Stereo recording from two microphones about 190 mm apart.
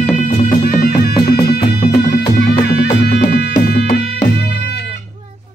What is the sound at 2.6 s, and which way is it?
Music, 60° left (ahead or behind).